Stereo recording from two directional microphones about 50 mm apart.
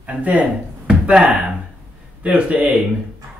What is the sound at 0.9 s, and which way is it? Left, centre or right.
Speech, centre.